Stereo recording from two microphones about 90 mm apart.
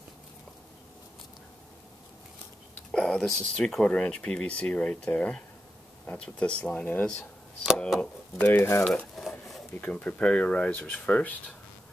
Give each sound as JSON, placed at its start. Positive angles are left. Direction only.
{"t": 2.9, "sound": "speech", "side_deg": 5}
{"t": 9.1, "sound": "a sound", "side_deg": 0}
{"t": 9.8, "sound": "speech", "side_deg": 15}